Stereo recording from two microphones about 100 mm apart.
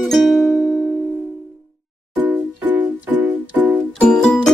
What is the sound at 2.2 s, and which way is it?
Music, 20° right (ahead or behind).